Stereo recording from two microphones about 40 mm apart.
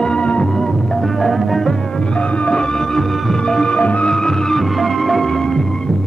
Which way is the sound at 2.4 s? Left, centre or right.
Left.